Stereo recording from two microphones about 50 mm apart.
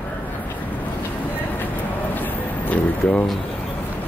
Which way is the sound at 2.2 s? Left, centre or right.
Left.